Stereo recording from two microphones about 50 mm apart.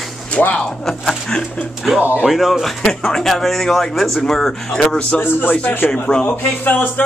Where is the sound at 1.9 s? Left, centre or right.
Centre.